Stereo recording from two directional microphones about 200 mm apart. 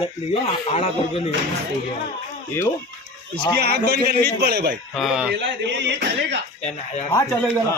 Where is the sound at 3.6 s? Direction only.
55° right (ahead or behind).